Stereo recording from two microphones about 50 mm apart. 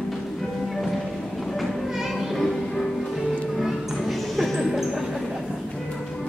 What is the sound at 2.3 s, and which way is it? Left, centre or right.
Music, centre.